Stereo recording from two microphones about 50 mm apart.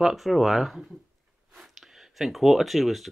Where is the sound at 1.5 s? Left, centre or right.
Centre.